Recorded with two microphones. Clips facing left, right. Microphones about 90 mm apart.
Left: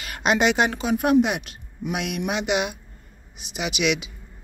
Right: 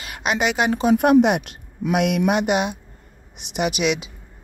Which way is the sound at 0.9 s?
65° right (ahead or behind).